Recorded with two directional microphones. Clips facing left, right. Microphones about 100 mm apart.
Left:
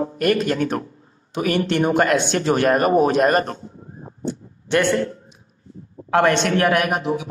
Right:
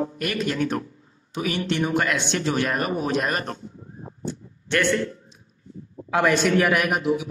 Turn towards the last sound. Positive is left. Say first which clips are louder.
# left 1 dB
turn(degrees=45)  # may be behind; listen again after turning